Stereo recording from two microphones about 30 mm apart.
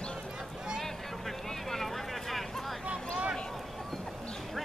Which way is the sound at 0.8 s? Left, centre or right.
Centre.